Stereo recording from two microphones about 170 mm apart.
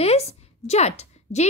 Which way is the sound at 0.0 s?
35° left (ahead or behind).